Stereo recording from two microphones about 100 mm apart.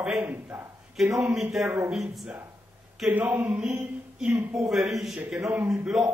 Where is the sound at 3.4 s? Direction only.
15° right (ahead or behind).